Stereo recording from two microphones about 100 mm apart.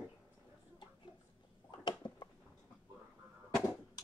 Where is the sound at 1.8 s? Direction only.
45° left (ahead or behind).